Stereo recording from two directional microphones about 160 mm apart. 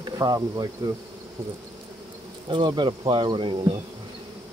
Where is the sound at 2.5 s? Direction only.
30° right (ahead or behind).